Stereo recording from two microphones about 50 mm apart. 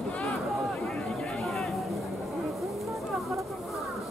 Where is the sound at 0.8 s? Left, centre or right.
Centre.